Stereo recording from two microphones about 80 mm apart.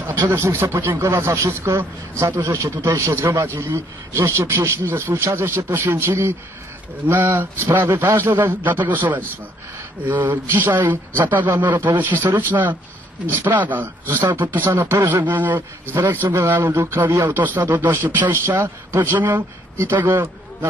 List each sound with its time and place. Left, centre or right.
0.0 s a man's voice: right